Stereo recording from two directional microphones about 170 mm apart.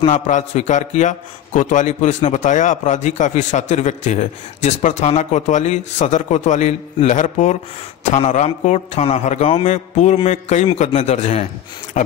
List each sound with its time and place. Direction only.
0.1 s a man's voice: 45° left (ahead or behind)